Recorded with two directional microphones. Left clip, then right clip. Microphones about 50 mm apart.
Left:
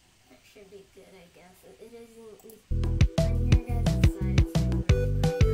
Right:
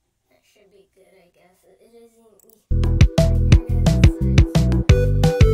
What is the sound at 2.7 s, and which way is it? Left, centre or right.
Music, centre.